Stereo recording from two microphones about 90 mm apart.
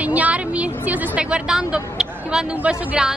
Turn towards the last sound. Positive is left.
turn(degrees=-10)  # may be behind; listen again after turning